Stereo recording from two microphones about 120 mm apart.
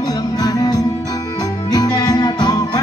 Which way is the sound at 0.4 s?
35° left (ahead or behind).